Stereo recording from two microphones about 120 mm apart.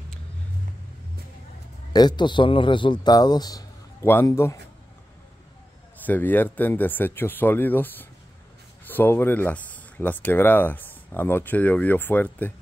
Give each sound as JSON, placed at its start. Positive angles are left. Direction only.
{"t": 1.9, "sound": "a man's voice", "side_deg": 35}
{"t": 4.0, "sound": "a man's voice", "side_deg": 20}
{"t": 6.0, "sound": "speech", "side_deg": 15}